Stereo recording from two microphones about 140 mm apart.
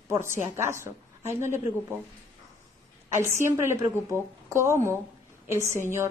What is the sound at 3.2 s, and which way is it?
A woman's voice, 20° right (ahead or behind).